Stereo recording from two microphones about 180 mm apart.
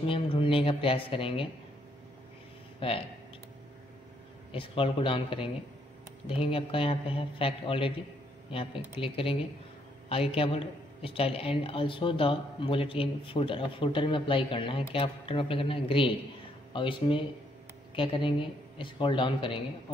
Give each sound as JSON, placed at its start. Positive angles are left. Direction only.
{"t": 0.0, "sound": "speech", "side_deg": 30}
{"t": 2.8, "sound": "speech", "side_deg": 30}
{"t": 4.5, "sound": "speech", "side_deg": 30}